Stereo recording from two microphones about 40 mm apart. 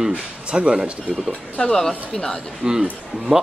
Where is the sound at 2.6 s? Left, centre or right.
Centre.